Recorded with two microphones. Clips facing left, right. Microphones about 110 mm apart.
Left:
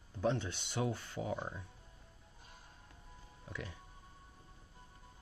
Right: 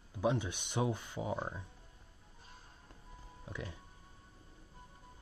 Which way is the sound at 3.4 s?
15° right (ahead or behind).